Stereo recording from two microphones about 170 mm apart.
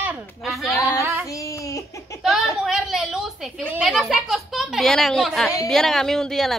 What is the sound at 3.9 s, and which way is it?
Speech, centre (ahead or behind).